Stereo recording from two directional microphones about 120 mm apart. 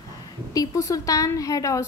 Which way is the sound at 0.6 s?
25° left (ahead or behind).